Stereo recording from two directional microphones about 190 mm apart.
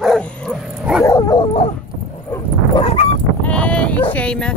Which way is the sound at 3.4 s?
5° left (ahead or behind).